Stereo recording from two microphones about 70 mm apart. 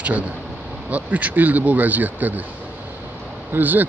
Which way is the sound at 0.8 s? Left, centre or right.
Right.